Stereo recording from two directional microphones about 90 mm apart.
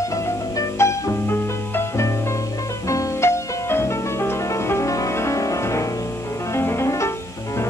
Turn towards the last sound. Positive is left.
turn(degrees=30)  # may be behind; listen again after turning